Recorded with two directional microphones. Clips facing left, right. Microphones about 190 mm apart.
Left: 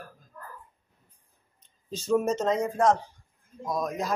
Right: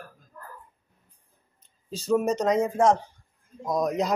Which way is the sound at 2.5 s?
20° right (ahead or behind).